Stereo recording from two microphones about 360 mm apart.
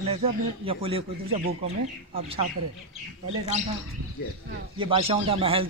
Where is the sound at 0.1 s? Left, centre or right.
Centre.